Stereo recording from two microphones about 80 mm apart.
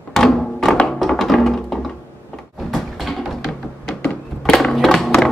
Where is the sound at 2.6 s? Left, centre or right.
Centre.